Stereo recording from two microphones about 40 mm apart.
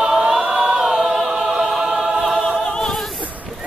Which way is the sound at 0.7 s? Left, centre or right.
Centre.